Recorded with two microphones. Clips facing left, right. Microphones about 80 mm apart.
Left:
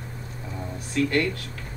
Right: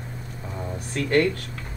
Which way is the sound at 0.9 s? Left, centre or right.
Right.